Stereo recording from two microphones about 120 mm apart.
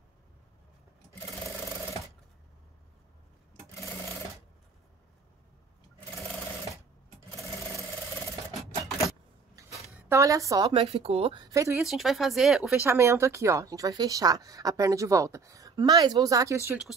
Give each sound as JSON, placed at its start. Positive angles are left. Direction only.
{"t": 9.6, "sound": "a sound", "side_deg": -25}
{"t": 10.7, "sound": "speech", "side_deg": -55}
{"t": 11.4, "sound": "speech", "side_deg": -25}
{"t": 11.8, "sound": "speech", "side_deg": 0}
{"t": 12.8, "sound": "speech", "side_deg": -20}